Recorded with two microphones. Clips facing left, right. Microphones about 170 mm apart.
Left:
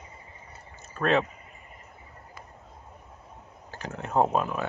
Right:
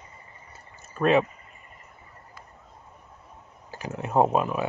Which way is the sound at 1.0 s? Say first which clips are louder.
Right 3 dB; 10° right (ahead or behind).